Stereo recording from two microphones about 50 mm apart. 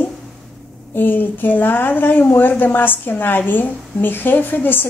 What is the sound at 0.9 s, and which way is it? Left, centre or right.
A woman's voice, left.